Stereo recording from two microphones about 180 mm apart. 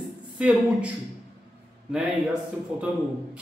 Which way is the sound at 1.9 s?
5° right (ahead or behind).